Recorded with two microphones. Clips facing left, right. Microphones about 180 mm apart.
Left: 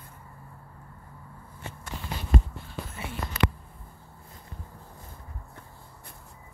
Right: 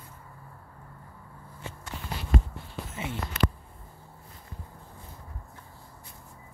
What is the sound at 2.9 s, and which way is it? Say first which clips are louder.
Speech: right 7 dB; 20° right (ahead or behind).